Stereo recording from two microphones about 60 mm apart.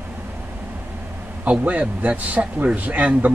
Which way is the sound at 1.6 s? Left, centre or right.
Right.